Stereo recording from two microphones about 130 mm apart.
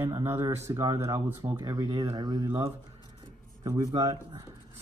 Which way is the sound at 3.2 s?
25° right (ahead or behind).